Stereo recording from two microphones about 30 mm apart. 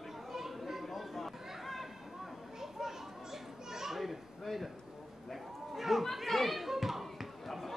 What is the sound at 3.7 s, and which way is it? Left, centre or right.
Children playing, centre.